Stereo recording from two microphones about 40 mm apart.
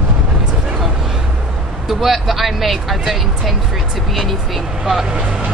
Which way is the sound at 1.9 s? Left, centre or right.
Centre.